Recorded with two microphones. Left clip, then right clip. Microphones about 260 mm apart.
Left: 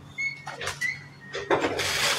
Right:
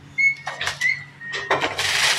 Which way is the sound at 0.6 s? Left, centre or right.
Right.